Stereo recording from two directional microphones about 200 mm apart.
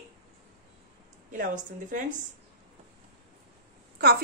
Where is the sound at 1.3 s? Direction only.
40° right (ahead or behind).